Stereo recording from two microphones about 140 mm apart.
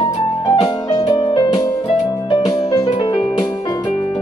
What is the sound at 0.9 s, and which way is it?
Music, 30° left (ahead or behind).